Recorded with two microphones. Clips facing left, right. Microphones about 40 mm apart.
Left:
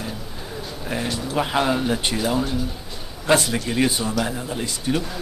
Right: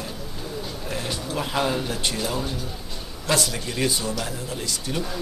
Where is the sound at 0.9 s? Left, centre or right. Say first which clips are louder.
Left 5 dB; centre.